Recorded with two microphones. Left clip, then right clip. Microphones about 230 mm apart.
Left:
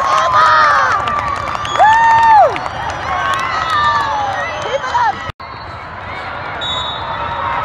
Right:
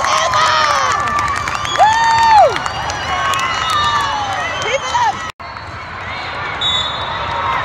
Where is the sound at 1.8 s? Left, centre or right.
Right.